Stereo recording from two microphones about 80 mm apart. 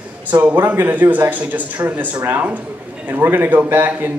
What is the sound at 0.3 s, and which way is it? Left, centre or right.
Speech, right.